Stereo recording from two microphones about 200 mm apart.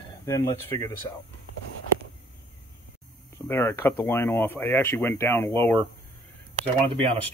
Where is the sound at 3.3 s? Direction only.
10° left (ahead or behind).